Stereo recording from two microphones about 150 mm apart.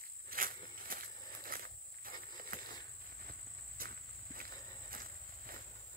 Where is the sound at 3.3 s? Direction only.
75° right (ahead or behind).